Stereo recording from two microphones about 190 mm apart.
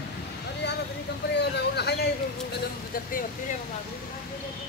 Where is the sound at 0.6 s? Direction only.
60° left (ahead or behind).